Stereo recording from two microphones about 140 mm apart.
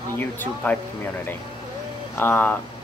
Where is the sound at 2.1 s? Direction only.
15° left (ahead or behind).